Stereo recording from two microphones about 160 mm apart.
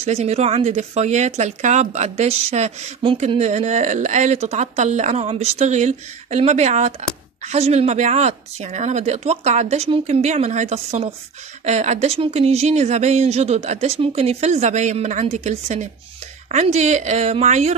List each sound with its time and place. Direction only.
0.0 s speech: 45° right (ahead or behind)